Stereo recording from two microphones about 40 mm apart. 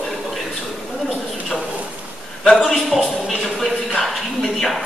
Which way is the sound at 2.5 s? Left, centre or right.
Centre.